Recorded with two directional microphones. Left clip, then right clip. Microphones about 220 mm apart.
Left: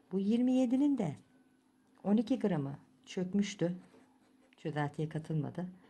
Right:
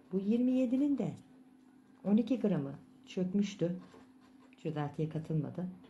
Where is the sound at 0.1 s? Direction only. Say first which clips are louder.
Even; 45° left (ahead or behind).